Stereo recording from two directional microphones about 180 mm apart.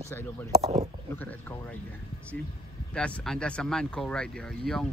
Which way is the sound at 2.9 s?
5° left (ahead or behind).